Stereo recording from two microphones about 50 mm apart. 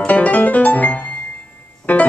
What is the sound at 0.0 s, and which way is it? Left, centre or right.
Music, left.